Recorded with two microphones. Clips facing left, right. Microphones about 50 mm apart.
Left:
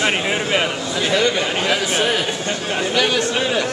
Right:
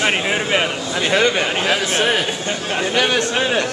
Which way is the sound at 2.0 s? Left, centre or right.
Right.